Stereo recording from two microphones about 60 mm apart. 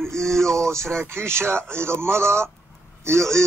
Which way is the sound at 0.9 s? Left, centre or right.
Right.